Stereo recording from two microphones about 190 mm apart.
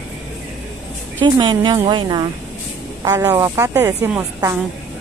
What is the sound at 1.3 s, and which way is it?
A woman's voice, 25° right (ahead or behind).